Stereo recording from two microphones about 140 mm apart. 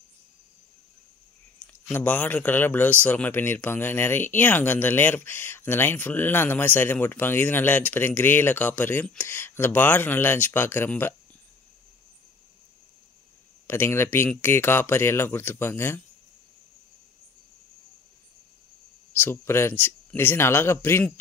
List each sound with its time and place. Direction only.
1.7 s a man's voice: 15° left (ahead or behind)
13.7 s a man's voice: 15° left (ahead or behind)
19.1 s a man's voice: 15° left (ahead or behind)